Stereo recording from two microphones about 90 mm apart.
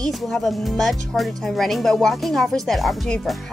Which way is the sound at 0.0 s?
5° left (ahead or behind).